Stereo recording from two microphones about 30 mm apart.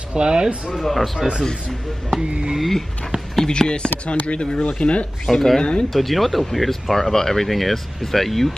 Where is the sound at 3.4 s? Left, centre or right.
Left.